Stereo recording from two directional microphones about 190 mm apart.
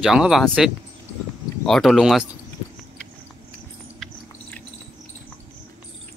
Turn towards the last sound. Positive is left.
turn(degrees=5)  # may be behind; listen again after turning